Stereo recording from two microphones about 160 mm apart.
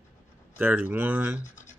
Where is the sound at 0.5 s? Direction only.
10° right (ahead or behind).